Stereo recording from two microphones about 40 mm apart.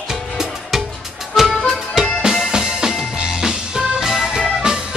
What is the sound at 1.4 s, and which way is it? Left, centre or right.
Music, centre.